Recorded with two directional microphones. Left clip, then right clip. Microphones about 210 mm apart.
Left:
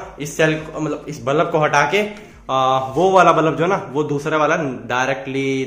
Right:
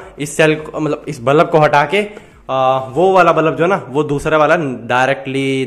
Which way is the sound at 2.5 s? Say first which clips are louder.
Right 3 dB; 25° right (ahead or behind).